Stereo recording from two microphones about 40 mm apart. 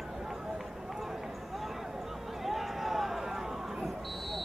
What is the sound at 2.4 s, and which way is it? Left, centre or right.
Run, centre.